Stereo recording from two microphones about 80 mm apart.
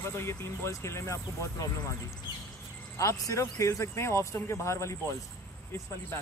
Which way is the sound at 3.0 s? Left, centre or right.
Left.